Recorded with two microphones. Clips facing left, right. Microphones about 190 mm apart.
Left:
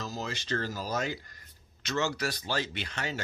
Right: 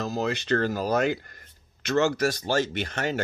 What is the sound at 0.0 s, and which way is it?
Speech, 60° right (ahead or behind).